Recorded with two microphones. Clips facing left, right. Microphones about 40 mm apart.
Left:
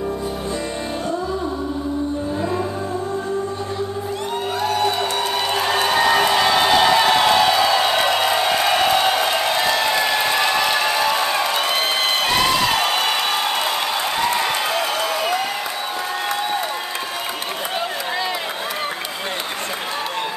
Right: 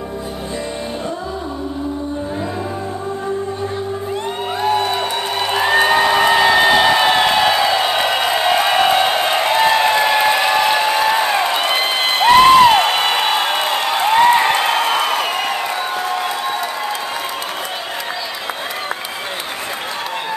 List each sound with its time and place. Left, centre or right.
4.6 s music: right
5.5 s a sound: centre
10.0 s applause: right